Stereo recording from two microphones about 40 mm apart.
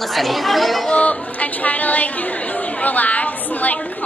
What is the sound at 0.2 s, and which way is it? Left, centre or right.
Speech, centre.